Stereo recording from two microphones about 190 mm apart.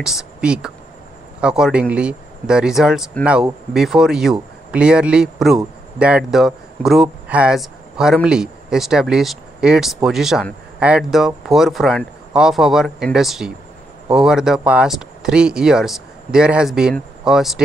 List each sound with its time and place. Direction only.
0.0 s speech: centre (ahead or behind)